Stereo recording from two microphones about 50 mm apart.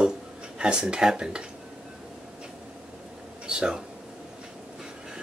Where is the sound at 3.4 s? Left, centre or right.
Centre.